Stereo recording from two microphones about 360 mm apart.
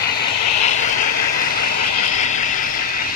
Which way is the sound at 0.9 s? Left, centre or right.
Left.